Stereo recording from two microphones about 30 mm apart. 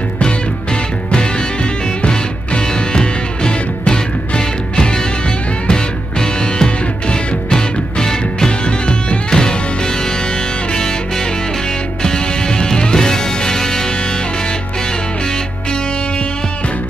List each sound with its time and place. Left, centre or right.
1.1 s music: left
8.6 s music: left
9.3 s music: left